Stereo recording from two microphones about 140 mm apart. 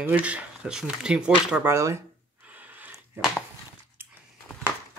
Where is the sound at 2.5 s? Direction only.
10° right (ahead or behind).